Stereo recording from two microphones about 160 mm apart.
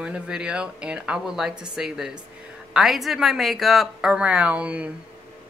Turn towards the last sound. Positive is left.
turn(degrees=-10)  # may be behind; listen again after turning